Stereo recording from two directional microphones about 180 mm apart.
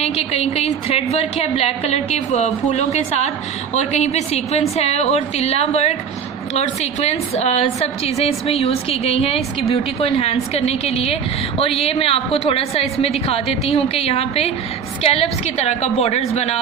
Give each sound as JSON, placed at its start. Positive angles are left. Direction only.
{"t": 0.0, "sound": "a woman's voice", "side_deg": 35}